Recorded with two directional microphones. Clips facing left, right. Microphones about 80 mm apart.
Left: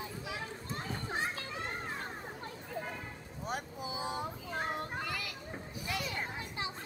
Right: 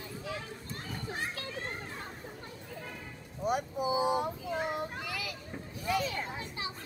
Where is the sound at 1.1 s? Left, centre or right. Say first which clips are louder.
Left 1 dB; left.